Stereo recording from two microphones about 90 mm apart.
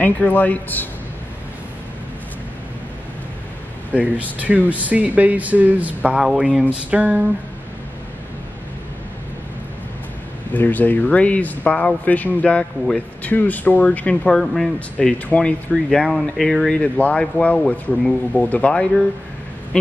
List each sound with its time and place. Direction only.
0.0 s speech: 20° left (ahead or behind)
3.9 s speech: 15° right (ahead or behind)
10.5 s speech: 20° left (ahead or behind)
14.3 s speech: 5° left (ahead or behind)